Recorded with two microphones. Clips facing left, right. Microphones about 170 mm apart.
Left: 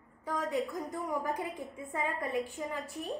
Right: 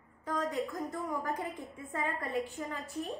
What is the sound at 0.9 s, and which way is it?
A woman's voice, 20° left (ahead or behind).